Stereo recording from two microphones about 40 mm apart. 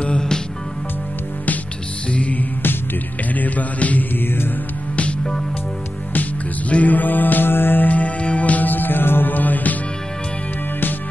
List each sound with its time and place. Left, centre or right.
0.0 s music: left
2.0 s music: left
3.3 s music: left
6.7 s music: left
7.9 s music: left